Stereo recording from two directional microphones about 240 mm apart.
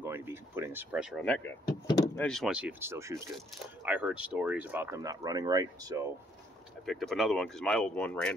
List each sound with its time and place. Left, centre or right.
0.0 s speech: centre
1.7 s door: centre
2.2 s speech: centre
6.9 s speech: centre